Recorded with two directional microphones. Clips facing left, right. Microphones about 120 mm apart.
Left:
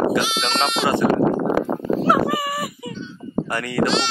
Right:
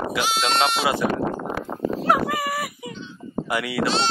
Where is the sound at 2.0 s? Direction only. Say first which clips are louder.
Left 3 dB; centre (ahead or behind).